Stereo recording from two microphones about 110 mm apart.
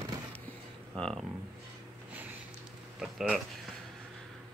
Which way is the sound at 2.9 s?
5° right (ahead or behind).